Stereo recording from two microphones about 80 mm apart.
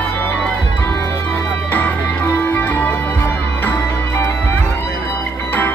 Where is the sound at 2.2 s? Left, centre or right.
Left.